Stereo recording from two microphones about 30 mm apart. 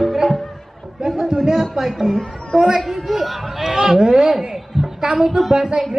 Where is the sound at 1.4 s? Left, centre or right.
Centre.